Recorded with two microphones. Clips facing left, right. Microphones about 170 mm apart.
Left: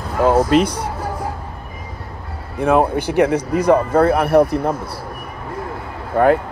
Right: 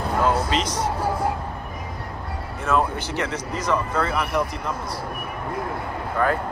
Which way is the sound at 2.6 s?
55° left (ahead or behind).